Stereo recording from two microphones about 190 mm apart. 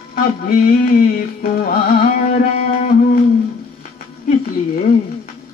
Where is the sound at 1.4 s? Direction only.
50° left (ahead or behind).